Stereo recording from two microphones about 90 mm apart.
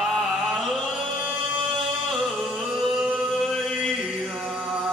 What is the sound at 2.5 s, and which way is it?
Chant, 5° right (ahead or behind).